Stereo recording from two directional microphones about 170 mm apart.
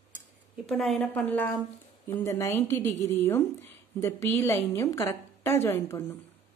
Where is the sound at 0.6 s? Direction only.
Centre (ahead or behind).